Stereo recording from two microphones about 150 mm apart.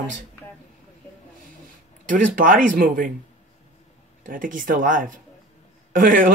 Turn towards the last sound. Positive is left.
turn(degrees=-65)  # may be behind; listen again after turning